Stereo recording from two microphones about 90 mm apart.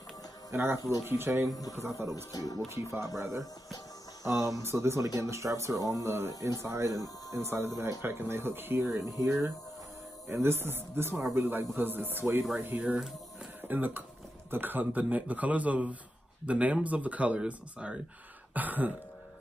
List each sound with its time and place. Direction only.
0.5 s speech: 25° right (ahead or behind)
2.3 s speech: 40° left (ahead or behind)
2.7 s speech: 30° right (ahead or behind)
6.9 s speech: 40° left (ahead or behind)
7.4 s speech: 30° right (ahead or behind)